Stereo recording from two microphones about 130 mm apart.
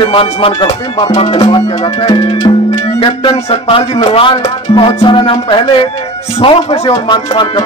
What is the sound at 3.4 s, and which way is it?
Speech, 50° left (ahead or behind).